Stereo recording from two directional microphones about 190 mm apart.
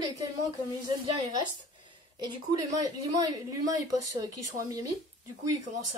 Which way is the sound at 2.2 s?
20° right (ahead or behind).